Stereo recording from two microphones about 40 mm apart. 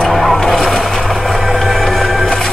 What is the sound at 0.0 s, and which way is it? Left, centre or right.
Vehicle, centre.